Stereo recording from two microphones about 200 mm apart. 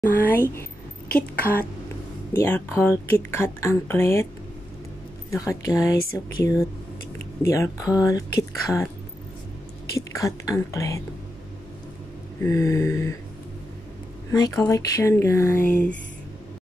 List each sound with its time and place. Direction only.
0.0 s speech: 10° left (ahead or behind)
5.3 s speech: 15° left (ahead or behind)
9.9 s speech: 15° left (ahead or behind)
12.4 s speech: 15° left (ahead or behind)
14.3 s speech: 15° left (ahead or behind)